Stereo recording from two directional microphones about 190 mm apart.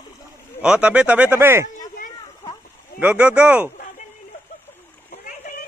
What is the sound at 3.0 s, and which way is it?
Speech, 5° right (ahead or behind).